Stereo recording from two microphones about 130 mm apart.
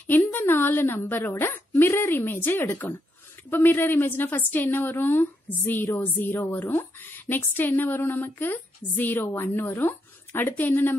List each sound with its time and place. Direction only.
0.0 s a woman's voice: 15° left (ahead or behind)